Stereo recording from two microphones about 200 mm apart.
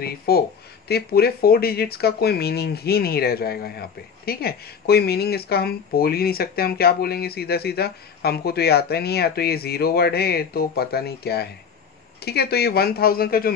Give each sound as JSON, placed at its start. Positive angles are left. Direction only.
{"t": 0.3, "sound": "speech", "side_deg": 50}